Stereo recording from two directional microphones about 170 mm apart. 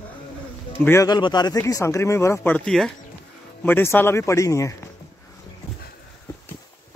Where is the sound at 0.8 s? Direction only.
20° left (ahead or behind).